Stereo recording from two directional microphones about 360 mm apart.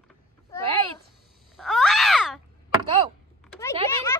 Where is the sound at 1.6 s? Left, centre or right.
Centre.